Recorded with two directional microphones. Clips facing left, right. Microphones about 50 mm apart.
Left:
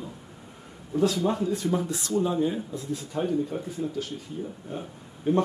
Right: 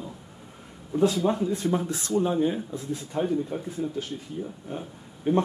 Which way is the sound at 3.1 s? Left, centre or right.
Right.